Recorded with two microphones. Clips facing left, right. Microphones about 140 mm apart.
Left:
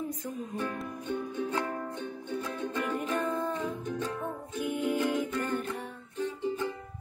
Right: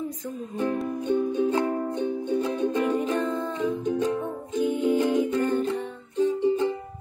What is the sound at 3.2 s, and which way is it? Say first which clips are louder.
Music: right 4 dB; 10° left (ahead or behind).